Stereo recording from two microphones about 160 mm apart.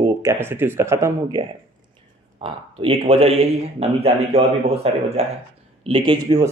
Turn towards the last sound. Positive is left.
turn(degrees=-35)  # may be behind; listen again after turning